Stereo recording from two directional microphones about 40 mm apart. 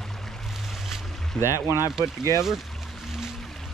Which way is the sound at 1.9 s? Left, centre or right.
Centre.